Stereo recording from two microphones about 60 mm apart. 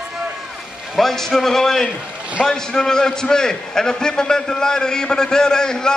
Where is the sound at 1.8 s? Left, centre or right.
Centre.